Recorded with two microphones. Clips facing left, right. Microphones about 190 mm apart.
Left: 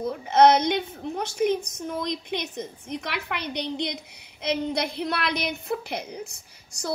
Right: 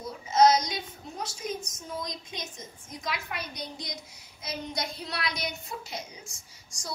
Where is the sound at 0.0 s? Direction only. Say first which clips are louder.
Left 4 dB; 60° left (ahead or behind).